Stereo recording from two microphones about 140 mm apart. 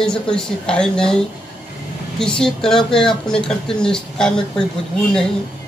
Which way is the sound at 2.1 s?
5° left (ahead or behind).